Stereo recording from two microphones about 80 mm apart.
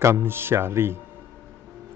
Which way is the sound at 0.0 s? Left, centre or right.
Right.